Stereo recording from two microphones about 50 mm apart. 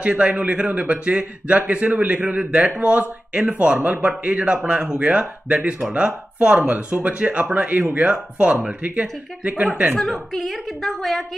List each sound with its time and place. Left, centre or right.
0.0 s speech: right
9.9 s a woman's voice: centre